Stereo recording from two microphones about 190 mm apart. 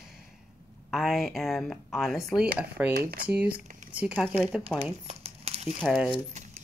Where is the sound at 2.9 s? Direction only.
55° right (ahead or behind).